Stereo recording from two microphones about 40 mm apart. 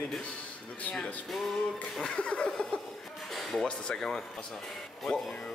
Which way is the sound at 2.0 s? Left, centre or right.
Left.